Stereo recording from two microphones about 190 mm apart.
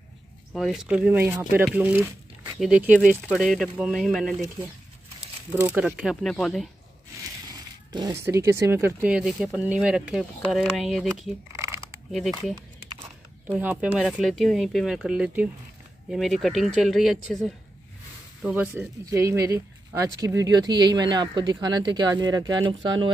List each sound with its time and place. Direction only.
0.5 s speech: centre (ahead or behind)
5.6 s speech: 10° right (ahead or behind)
7.9 s speech: 15° right (ahead or behind); by 11.3 s centre (ahead or behind)
11.5 s a sound: 15° right (ahead or behind)
12.1 s speech: centre (ahead or behind); by 22.8 s 25° right (ahead or behind)